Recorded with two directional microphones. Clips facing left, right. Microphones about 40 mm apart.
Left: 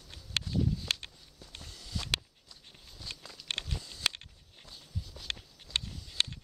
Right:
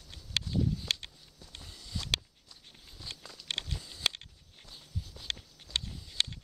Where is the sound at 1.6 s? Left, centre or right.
Centre.